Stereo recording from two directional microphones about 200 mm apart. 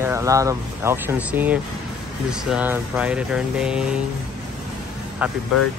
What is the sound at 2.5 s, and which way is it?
Mantra, 5° right (ahead or behind).